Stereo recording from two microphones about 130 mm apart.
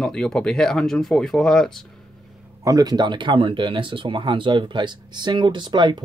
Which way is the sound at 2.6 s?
30° right (ahead or behind).